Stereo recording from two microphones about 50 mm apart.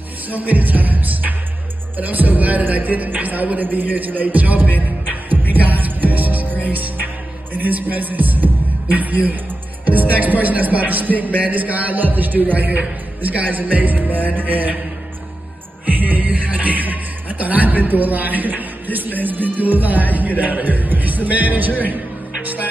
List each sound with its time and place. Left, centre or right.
0.3 s speech: right
5.5 s music: right
6.7 s speech: right
15.9 s speech: right
22.4 s music: right